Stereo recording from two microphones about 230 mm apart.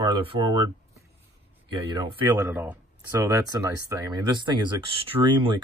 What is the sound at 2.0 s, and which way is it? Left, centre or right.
Speech, centre.